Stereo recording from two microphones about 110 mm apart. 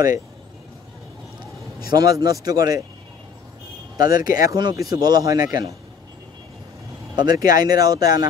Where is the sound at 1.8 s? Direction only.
40° right (ahead or behind).